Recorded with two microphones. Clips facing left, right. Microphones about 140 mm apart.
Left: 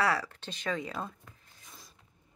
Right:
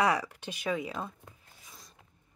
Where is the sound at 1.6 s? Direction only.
Centre (ahead or behind).